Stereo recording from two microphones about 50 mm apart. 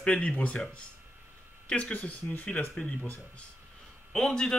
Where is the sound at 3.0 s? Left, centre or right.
Left.